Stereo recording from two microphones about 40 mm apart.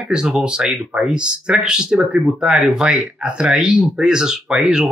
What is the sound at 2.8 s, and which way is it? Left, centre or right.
Speech, right.